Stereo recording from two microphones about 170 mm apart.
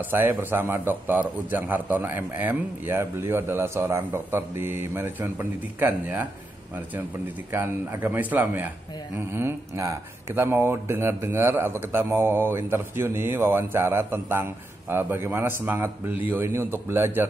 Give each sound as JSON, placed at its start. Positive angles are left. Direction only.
{"t": 0.1, "sound": "speech", "side_deg": -10}
{"t": 7.5, "sound": "speech", "side_deg": -10}